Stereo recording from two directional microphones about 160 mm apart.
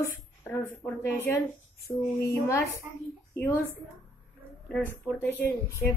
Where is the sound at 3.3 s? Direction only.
15° left (ahead or behind).